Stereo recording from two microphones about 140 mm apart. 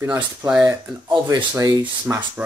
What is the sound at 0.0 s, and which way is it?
Speech, 15° right (ahead or behind).